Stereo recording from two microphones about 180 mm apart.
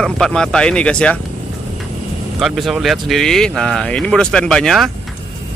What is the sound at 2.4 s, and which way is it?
Speech, centre (ahead or behind).